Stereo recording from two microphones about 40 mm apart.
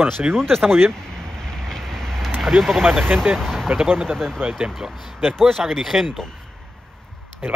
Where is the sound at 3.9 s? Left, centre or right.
Right.